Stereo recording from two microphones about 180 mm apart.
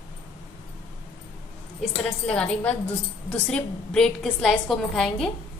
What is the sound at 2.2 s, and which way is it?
A woman's voice, 5° left (ahead or behind).